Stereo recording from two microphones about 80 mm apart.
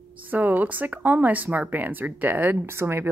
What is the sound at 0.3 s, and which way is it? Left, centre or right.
Speech, right.